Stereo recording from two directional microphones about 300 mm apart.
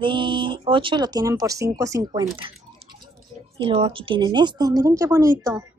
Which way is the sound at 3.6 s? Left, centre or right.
Centre.